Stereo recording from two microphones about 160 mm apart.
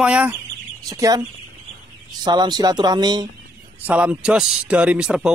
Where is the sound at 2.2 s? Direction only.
25° right (ahead or behind).